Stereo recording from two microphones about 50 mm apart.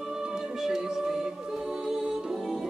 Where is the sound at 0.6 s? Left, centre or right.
Centre.